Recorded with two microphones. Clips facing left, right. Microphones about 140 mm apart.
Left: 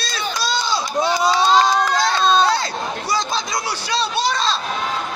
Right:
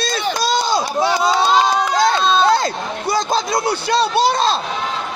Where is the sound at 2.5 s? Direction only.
50° right (ahead or behind).